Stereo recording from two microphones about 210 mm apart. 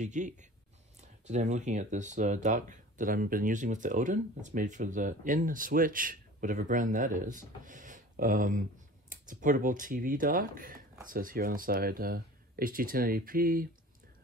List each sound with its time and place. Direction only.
0.0 s speech: 35° right (ahead or behind)